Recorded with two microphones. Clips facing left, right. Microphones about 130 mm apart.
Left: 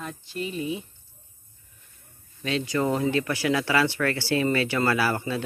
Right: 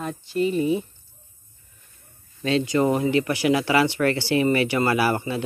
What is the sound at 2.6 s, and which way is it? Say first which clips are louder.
Speech: right 2 dB; 20° right (ahead or behind).